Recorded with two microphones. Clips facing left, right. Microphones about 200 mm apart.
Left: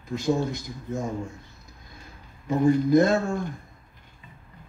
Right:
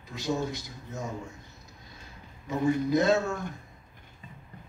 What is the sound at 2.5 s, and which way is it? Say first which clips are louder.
Speech: left 6 dB; 50° left (ahead or behind).